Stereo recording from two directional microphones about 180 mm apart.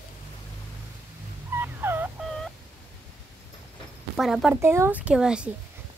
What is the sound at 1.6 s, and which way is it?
Fowl, 10° right (ahead or behind).